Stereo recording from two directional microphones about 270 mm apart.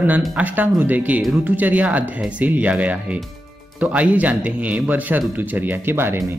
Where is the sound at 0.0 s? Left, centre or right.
Centre.